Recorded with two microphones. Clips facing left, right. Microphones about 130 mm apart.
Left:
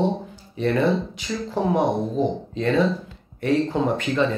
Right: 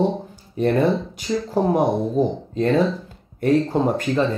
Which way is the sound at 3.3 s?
45° right (ahead or behind).